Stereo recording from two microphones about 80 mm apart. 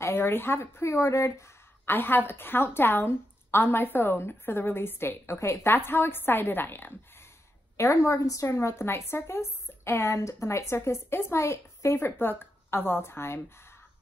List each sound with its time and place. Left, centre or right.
0.0 s a woman's voice: left
1.9 s a woman's voice: left
7.7 s a woman's voice: left